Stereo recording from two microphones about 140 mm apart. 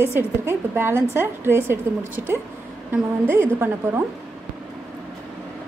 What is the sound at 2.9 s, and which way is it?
A woman's voice, 15° right (ahead or behind).